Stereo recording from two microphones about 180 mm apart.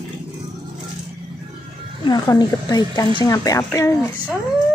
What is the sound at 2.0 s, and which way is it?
Speech, 20° left (ahead or behind).